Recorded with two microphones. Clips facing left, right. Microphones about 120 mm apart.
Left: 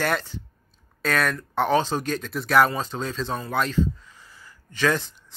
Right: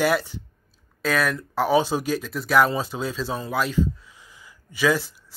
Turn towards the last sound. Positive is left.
turn(degrees=-5)  # may be behind; listen again after turning